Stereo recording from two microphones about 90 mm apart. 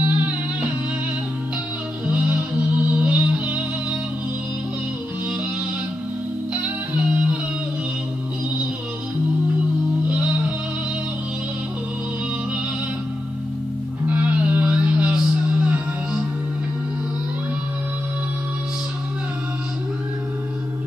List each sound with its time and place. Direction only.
0.0 s music: 15° right (ahead or behind)
2.0 s music: 15° right (ahead or behind)
6.9 s music: 15° right (ahead or behind)
10.0 s music: 15° right (ahead or behind)
14.0 s music: 15° right (ahead or behind)